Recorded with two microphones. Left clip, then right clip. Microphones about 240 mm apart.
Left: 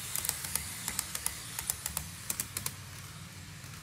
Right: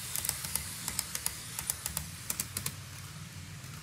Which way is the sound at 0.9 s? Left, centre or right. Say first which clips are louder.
Even; left.